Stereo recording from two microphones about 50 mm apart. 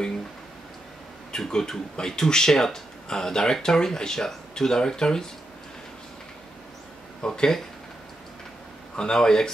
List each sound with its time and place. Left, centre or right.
1.3 s speech: centre
7.2 s speech: centre
8.9 s speech: centre